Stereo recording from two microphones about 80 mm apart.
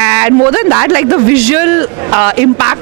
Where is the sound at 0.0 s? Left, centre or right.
Right.